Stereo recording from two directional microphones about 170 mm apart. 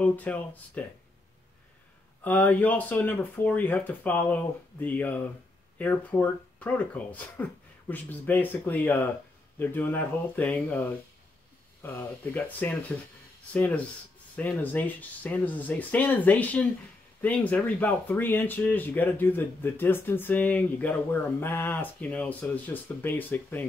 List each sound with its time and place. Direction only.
0.0 s speech: 10° left (ahead or behind)
2.2 s speech: 10° left (ahead or behind)